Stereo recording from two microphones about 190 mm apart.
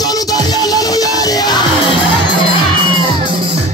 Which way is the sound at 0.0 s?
20° left (ahead or behind).